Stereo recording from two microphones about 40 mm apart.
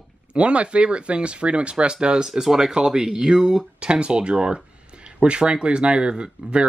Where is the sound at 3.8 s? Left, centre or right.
Right.